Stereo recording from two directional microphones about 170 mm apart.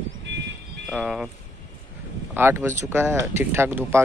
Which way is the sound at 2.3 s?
15° right (ahead or behind).